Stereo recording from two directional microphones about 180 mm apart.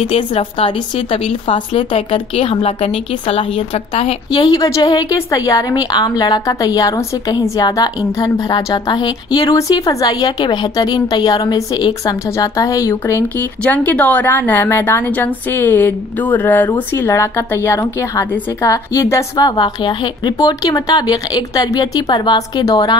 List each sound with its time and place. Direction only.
0.0 s a woman's voice: 30° left (ahead or behind)